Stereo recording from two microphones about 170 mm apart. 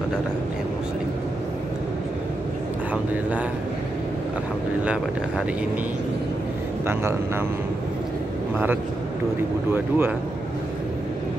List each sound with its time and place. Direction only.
6.9 s speech: 15° right (ahead or behind)
9.7 s speech: 10° right (ahead or behind)